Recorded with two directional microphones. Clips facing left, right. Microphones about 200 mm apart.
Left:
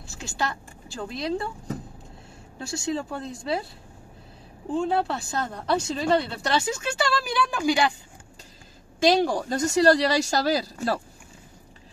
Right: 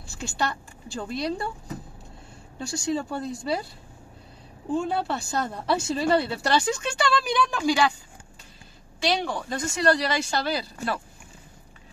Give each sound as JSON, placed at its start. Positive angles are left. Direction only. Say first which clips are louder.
{"t": 0.0, "sound": "speech", "louder": "right 1 dB", "side_deg": 0}
{"t": 2.6, "sound": "speech", "louder": "right 1 dB", "side_deg": 0}
{"t": 4.7, "sound": "speech", "louder": "left 2 dB", "side_deg": 0}
{"t": 9.0, "sound": "speech", "louder": "left 6 dB", "side_deg": 40}